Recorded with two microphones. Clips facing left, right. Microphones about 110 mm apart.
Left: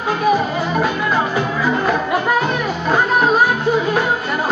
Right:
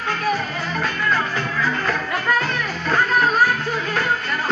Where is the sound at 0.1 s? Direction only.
15° left (ahead or behind).